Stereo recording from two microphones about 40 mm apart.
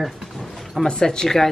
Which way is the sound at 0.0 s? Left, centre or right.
Centre.